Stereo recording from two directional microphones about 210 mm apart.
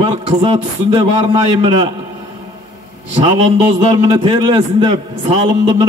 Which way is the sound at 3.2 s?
25° right (ahead or behind).